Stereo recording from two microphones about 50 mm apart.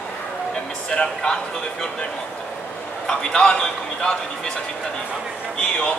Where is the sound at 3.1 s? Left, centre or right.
Centre.